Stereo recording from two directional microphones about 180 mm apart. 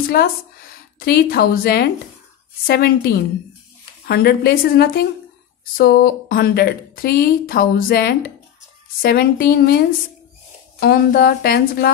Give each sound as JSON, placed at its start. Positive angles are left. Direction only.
{"t": 0.0, "sound": "a woman's voice", "side_deg": 55}